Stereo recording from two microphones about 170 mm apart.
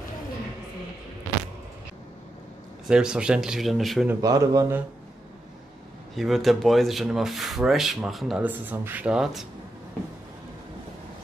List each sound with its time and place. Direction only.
2.9 s speech: 5° right (ahead or behind)
4.1 s speech: 20° right (ahead or behind)
6.1 s speech: centre (ahead or behind)